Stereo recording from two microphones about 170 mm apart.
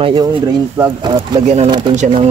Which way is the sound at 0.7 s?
15° right (ahead or behind).